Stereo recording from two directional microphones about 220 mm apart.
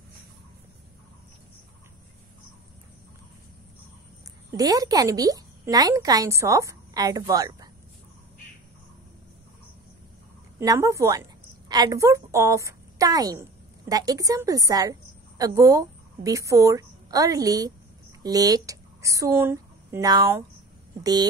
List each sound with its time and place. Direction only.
4.5 s a woman's voice: 15° right (ahead or behind)
10.6 s a woman's voice: 15° right (ahead or behind)